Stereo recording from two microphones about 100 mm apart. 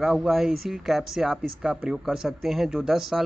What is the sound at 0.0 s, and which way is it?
Speech, 5° right (ahead or behind).